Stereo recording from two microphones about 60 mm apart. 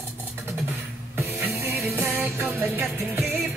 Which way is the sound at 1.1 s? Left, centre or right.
Right.